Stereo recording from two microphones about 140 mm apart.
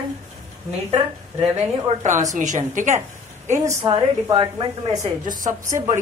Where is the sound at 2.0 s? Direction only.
60° right (ahead or behind).